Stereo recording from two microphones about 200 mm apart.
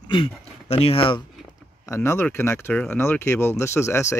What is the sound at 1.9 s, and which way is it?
Speech, 10° left (ahead or behind).